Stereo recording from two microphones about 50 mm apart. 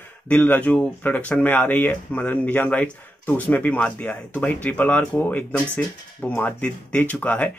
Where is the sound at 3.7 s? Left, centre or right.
Left.